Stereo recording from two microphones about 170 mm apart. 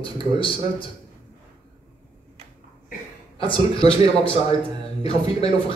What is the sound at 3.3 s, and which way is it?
A man's voice, 30° left (ahead or behind).